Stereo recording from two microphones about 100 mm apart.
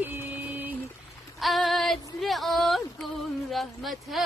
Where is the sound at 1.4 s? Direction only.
Centre (ahead or behind).